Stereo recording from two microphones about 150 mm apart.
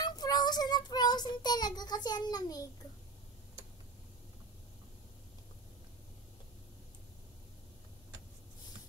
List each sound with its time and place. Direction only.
0.0 s child singing: 25° left (ahead or behind)